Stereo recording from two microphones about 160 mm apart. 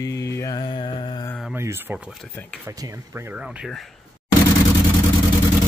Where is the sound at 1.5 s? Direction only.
15° right (ahead or behind).